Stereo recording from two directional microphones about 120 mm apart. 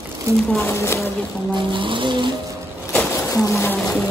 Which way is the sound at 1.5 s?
45° right (ahead or behind).